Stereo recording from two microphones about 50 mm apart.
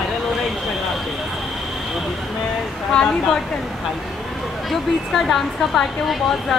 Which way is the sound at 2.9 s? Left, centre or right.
Centre.